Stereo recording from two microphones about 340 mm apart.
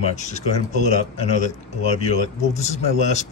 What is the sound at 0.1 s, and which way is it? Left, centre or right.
Speech, left.